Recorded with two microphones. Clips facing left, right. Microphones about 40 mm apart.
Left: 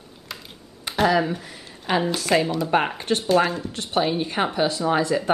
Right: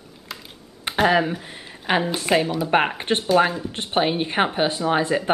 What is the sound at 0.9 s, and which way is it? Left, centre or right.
Speech, right.